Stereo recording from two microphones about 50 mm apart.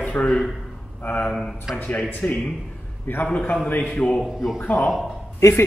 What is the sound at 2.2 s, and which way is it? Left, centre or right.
Music, left.